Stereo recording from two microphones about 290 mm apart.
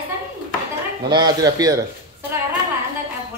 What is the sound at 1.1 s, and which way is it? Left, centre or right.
Cutlery, centre.